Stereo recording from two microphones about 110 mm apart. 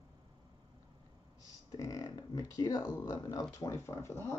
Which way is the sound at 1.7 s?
35° left (ahead or behind).